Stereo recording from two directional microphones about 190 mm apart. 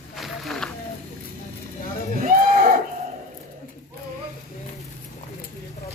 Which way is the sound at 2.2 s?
45° right (ahead or behind).